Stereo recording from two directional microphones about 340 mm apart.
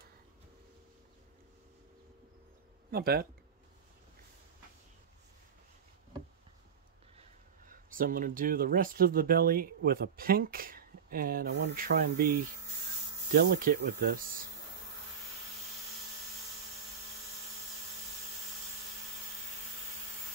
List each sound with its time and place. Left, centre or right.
2.9 s speech: right
7.6 s speech: right